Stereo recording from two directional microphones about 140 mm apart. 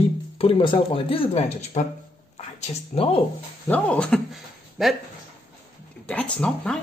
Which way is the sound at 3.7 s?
5° left (ahead or behind).